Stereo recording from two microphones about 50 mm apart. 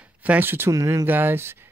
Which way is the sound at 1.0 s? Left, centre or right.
Right.